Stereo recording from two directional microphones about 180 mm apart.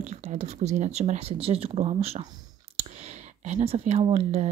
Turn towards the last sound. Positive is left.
turn(degrees=-40)  # may be behind; listen again after turning